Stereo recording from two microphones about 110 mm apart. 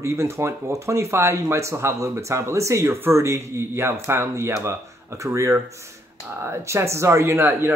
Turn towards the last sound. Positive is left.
turn(degrees=-20)  # may be behind; listen again after turning